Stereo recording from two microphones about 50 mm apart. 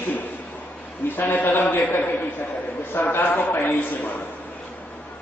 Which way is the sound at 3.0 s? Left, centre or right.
Left.